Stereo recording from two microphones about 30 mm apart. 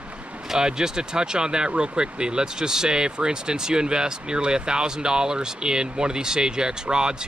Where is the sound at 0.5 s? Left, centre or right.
Right.